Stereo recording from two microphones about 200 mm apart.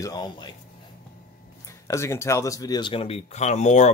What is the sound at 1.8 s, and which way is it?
Speech, 15° left (ahead or behind).